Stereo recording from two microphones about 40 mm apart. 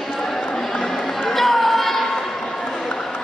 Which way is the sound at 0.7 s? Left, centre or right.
Centre.